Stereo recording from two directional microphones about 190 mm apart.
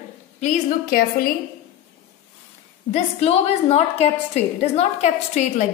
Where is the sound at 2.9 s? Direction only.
35° left (ahead or behind).